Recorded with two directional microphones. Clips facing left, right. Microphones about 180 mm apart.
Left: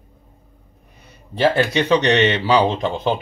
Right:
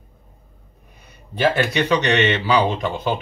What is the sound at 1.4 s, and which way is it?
Speech, 30° left (ahead or behind).